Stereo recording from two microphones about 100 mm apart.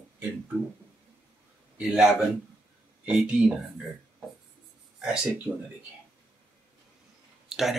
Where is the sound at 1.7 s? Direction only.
10° right (ahead or behind).